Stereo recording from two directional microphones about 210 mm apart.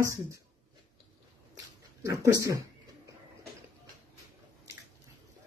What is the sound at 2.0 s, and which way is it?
Speech, 15° right (ahead or behind).